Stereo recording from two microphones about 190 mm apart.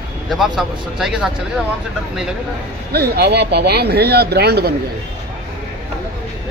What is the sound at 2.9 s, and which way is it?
Speech, 55° right (ahead or behind).